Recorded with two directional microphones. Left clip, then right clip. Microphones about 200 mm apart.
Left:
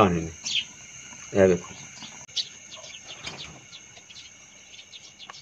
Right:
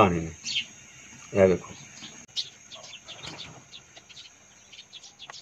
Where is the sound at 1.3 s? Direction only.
10° left (ahead or behind).